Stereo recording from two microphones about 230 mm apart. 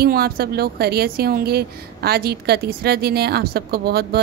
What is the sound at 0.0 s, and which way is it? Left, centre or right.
Speech, right.